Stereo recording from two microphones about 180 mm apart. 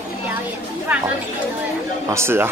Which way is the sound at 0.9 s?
5° right (ahead or behind).